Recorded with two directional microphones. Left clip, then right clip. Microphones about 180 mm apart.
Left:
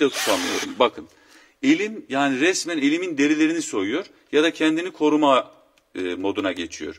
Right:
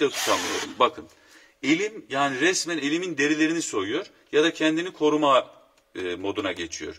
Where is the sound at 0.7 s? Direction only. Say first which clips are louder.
Left 2 dB; 30° left (ahead or behind).